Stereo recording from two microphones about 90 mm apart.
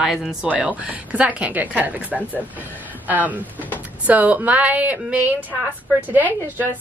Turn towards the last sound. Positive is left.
turn(degrees=-20)  # may be behind; listen again after turning